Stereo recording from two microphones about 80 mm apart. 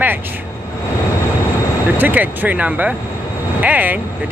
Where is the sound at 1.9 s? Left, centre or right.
Right.